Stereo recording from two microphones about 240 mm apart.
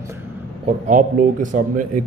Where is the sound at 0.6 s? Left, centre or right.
Right.